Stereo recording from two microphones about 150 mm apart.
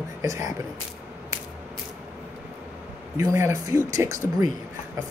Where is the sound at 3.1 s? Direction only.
20° right (ahead or behind).